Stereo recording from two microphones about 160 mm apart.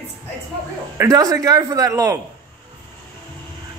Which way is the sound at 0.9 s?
20° right (ahead or behind).